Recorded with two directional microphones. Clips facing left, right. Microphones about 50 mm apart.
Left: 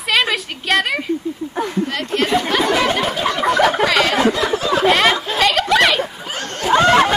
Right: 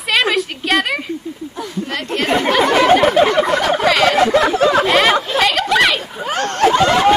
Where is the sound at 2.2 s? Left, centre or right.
Right.